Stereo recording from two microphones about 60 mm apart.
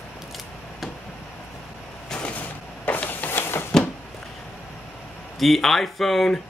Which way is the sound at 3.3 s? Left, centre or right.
Left.